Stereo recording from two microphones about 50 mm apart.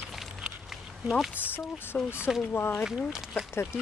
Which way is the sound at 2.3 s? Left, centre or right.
Centre.